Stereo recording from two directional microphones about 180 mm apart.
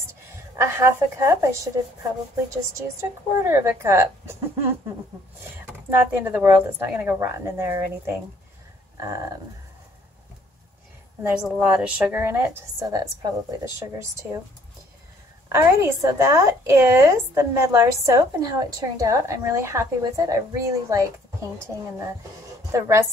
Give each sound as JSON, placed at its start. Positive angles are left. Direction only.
{"t": 0.6, "sound": "a woman's voice", "side_deg": -15}
{"t": 3.0, "sound": "a woman's voice", "side_deg": -15}
{"t": 5.9, "sound": "a woman's voice", "side_deg": -10}
{"t": 11.2, "sound": "a woman's voice", "side_deg": -5}
{"t": 15.4, "sound": "a woman's voice", "side_deg": -15}
{"t": 22.7, "sound": "a woman's voice", "side_deg": -15}